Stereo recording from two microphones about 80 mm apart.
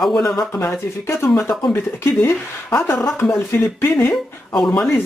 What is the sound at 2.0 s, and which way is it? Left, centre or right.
Speech, left.